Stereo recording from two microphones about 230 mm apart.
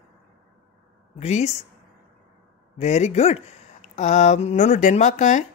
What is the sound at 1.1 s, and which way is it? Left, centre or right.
Speech, left.